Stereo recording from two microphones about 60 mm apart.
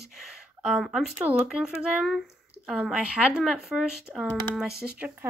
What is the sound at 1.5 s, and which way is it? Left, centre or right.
Speech, centre.